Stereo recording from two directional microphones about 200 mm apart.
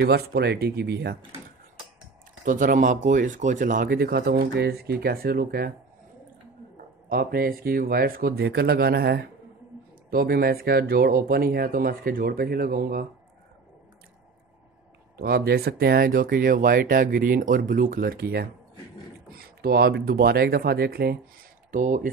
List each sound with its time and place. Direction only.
0.0 s speech: 50° right (ahead or behind)
2.4 s speech: 40° right (ahead or behind)
7.1 s speech: 50° right (ahead or behind)
15.1 s speech: 50° right (ahead or behind)
21.7 s speech: 40° right (ahead or behind)